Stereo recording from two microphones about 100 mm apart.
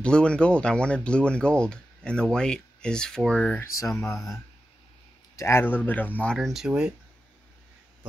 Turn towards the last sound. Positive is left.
turn(degrees=-10)  # may be behind; listen again after turning